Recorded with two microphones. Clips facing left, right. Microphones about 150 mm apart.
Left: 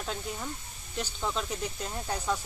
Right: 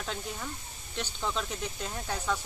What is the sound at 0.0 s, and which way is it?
Speech, 5° left (ahead or behind).